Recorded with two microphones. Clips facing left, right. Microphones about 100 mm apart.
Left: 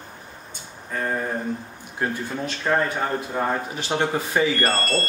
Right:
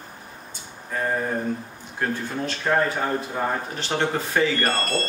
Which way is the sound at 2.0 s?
15° left (ahead or behind).